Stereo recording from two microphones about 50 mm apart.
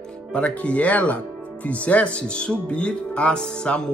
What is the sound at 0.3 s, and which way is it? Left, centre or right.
Speech, left.